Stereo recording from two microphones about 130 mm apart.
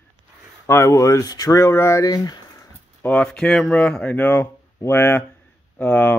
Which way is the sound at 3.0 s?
10° left (ahead or behind).